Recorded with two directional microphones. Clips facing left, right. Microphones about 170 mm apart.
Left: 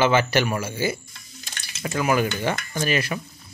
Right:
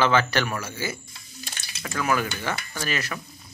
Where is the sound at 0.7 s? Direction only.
25° left (ahead or behind).